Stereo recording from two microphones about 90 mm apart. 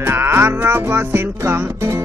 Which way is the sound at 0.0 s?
25° right (ahead or behind).